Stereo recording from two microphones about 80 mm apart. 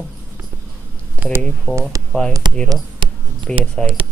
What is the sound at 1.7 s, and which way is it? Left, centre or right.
Speech, right.